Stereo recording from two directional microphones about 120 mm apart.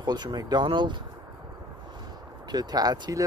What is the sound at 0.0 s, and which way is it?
Speech, 35° right (ahead or behind).